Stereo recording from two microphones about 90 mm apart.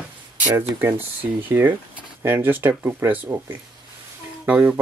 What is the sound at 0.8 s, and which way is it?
Speech, 25° right (ahead or behind).